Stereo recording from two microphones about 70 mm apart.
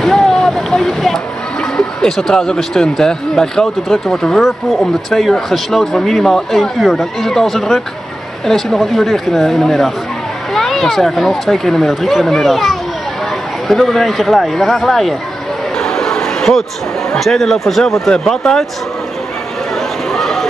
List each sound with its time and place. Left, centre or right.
0.0 s speech: centre
15.8 s a sound: centre
17.2 s speech: centre
20.1 s run: centre